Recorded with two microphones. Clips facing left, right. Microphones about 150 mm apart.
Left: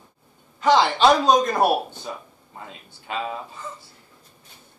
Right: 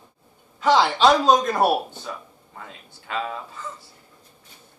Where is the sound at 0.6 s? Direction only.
Centre (ahead or behind).